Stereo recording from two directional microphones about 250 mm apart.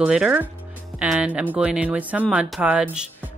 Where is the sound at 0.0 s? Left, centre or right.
Centre.